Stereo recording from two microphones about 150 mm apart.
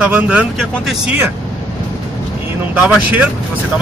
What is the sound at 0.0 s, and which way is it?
Speech, 10° right (ahead or behind).